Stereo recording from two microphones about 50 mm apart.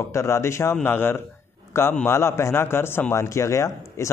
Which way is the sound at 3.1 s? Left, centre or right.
Left.